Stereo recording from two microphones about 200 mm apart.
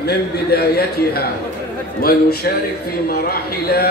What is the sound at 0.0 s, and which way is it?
A man's voice, 50° left (ahead or behind).